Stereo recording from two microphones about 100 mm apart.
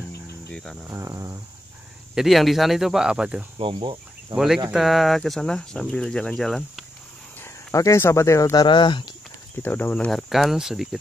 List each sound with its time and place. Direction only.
0.5 s speech: 5° left (ahead or behind)
0.8 s speech: 30° right (ahead or behind)
2.1 s speech: centre (ahead or behind)
3.7 s speech: 50° right (ahead or behind)
4.7 s speech: centre (ahead or behind)
7.7 s speech: 30° left (ahead or behind)
8.5 s speech: 50° left (ahead or behind)
9.6 s speech: 15° left (ahead or behind)
10.1 s speech: centre (ahead or behind)